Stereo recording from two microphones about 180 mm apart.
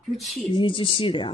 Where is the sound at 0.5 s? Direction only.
30° left (ahead or behind).